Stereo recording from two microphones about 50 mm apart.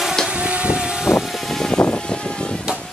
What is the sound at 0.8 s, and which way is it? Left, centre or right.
Vehicle, centre.